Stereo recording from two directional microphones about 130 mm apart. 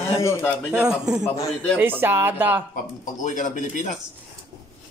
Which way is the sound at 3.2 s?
80° left.